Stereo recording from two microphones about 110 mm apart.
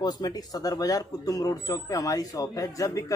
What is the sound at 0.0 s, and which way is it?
Speech, 35° left (ahead or behind).